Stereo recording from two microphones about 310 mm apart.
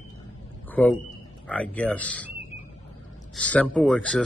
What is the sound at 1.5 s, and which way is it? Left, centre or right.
Speech, centre.